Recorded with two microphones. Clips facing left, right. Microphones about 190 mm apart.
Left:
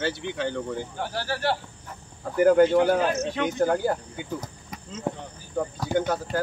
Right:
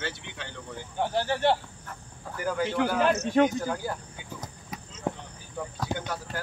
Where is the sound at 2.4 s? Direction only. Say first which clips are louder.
Left 9 dB; 60° left (ahead or behind).